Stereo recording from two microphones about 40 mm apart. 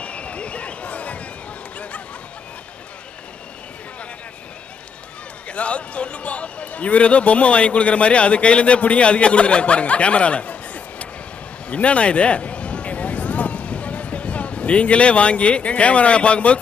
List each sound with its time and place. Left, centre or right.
0.0 s horse: left
5.5 s speech: left
11.7 s a sound: left